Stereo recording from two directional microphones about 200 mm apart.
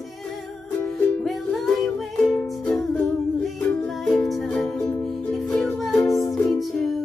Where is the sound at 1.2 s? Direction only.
Centre (ahead or behind).